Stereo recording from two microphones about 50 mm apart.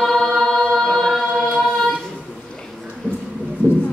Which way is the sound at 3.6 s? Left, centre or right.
Left.